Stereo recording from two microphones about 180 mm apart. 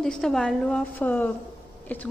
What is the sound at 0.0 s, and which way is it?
A woman's voice, 5° left (ahead or behind).